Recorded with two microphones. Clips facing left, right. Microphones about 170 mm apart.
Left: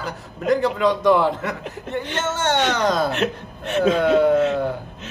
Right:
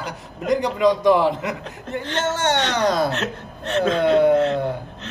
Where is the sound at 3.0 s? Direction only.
15° left (ahead or behind).